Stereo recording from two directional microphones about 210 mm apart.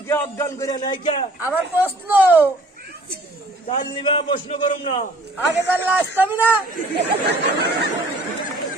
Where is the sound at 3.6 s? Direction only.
25° left (ahead or behind).